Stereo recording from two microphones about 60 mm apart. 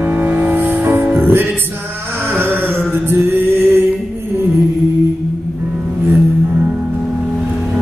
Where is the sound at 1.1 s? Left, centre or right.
Right.